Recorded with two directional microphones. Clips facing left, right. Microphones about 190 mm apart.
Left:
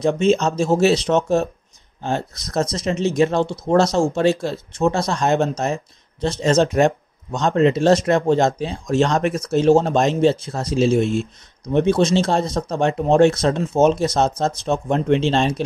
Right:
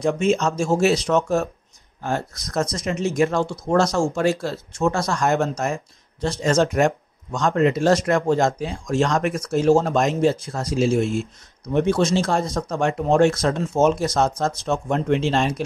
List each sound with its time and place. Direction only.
0.0 s speech: 25° left (ahead or behind)